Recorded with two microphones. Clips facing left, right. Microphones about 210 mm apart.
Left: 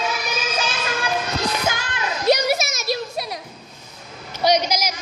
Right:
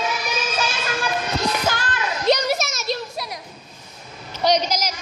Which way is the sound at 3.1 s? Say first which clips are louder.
Left 3 dB; 25° left (ahead or behind).